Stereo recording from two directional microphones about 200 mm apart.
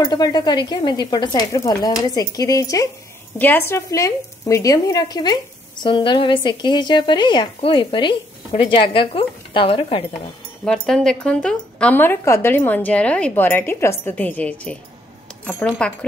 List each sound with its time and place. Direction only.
0.0 s a woman's voice: 20° left (ahead or behind)
10.6 s speech: 5° left (ahead or behind)